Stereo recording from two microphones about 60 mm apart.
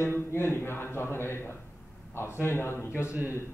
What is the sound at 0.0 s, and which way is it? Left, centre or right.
A man's voice, left.